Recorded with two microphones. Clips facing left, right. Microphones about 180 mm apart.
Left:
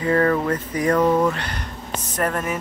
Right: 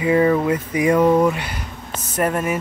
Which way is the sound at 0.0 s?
10° right (ahead or behind).